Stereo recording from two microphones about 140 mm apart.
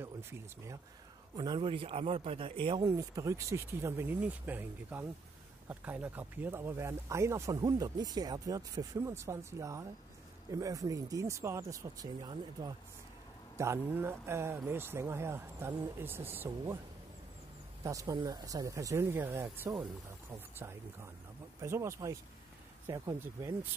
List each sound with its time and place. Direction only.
0.0 s speech: 15° right (ahead or behind)
1.3 s speech: 30° right (ahead or behind)
3.0 s speech: 20° right (ahead or behind)
17.8 s speech: 20° right (ahead or behind)
21.5 s speech: 20° right (ahead or behind)